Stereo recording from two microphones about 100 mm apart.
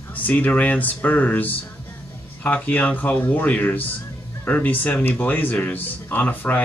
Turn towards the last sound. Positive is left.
turn(degrees=20)  # may be behind; listen again after turning